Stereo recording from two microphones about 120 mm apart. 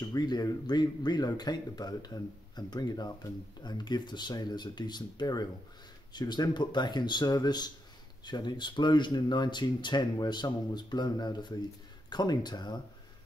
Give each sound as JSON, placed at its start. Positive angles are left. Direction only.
{"t": 0.0, "sound": "speech", "side_deg": 35}